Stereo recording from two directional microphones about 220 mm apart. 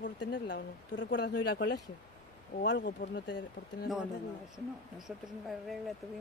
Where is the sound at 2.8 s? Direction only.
40° left (ahead or behind).